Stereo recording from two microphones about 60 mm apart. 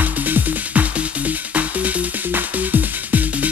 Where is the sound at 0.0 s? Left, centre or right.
Right.